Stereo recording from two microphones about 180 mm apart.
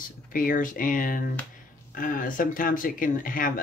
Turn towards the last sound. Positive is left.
turn(degrees=50)  # may be behind; listen again after turning